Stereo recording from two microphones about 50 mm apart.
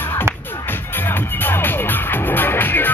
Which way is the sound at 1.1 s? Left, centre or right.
Left.